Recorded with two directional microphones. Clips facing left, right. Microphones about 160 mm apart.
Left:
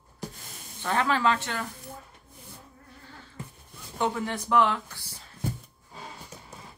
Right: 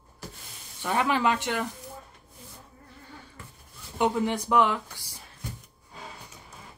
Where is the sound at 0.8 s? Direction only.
15° right (ahead or behind).